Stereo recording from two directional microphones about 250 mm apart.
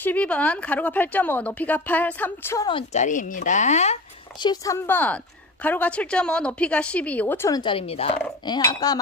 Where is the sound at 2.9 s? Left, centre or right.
Left.